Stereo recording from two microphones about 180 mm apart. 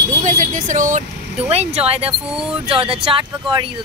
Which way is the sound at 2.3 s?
5° right (ahead or behind).